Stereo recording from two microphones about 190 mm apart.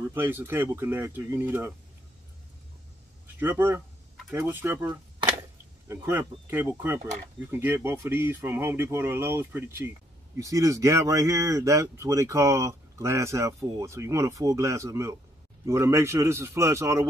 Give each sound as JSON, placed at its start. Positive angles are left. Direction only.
{"t": 0.1, "sound": "speech", "side_deg": -10}
{"t": 3.3, "sound": "speech", "side_deg": -10}